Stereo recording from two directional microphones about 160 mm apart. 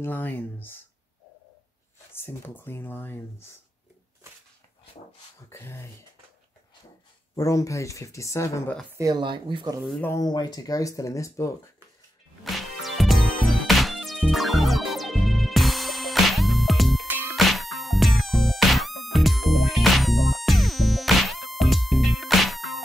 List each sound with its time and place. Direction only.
0.0 s speech: 10° left (ahead or behind)
2.1 s speech: 15° left (ahead or behind)
5.5 s speech: 15° left (ahead or behind)
7.3 s speech: 20° left (ahead or behind)
8.9 s speech: 25° right (ahead or behind)
9.8 s speech: 5° left (ahead or behind)
10.1 s speech: 25° left (ahead or behind)
12.4 s music: centre (ahead or behind)